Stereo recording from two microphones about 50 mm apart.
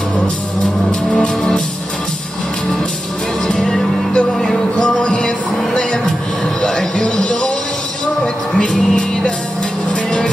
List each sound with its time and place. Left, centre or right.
1.1 s music: centre
3.4 s music: centre
8.5 s music: centre